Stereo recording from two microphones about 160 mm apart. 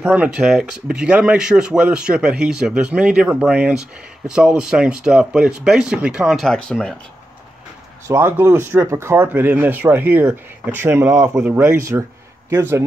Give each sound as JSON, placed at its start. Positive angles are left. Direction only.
{"t": 0.0, "sound": "speech", "side_deg": -10}
{"t": 8.1, "sound": "a man's voice", "side_deg": -15}